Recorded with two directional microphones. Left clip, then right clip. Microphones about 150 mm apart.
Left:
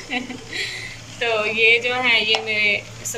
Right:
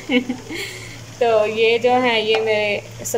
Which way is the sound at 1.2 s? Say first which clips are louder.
Right 2 dB; 40° right (ahead or behind).